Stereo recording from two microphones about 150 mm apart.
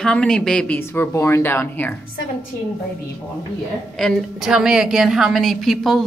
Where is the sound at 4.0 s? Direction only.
Centre (ahead or behind).